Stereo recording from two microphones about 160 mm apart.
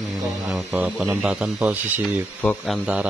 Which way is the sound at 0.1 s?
Centre (ahead or behind).